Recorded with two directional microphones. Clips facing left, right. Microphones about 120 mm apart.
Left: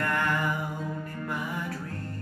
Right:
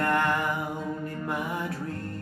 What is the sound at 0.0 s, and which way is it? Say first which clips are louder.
Music: right 3 dB; 25° right (ahead or behind).